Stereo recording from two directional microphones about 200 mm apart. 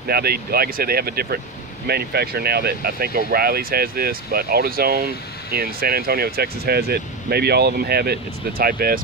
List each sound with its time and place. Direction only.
0.0 s speech: 50° right (ahead or behind)